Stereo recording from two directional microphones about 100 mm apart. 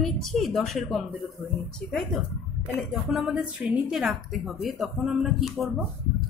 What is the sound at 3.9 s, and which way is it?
Speech, centre (ahead or behind).